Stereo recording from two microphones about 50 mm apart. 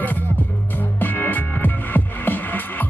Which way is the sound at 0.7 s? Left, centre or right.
Left.